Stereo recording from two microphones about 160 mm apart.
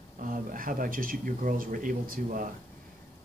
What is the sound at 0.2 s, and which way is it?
Speech, 60° right (ahead or behind).